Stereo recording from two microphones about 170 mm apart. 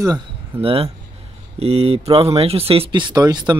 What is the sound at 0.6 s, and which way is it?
Speech, 35° right (ahead or behind).